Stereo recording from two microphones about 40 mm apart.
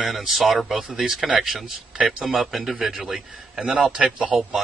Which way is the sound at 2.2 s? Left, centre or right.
Centre.